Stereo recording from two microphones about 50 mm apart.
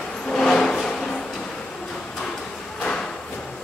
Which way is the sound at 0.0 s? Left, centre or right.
Centre.